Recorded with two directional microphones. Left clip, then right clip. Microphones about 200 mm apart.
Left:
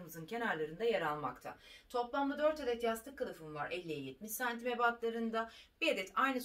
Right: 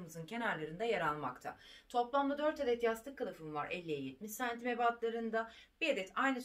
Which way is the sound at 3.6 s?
50° right (ahead or behind).